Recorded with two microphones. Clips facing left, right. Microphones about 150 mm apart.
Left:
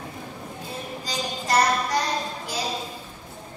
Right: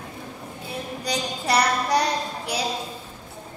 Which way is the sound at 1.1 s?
70° right (ahead or behind).